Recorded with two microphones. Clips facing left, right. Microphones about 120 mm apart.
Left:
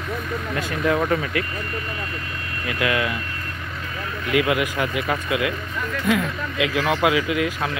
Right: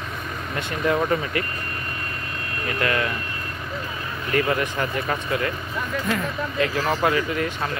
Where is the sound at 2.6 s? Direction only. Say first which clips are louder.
Left 1 dB; 5° left (ahead or behind).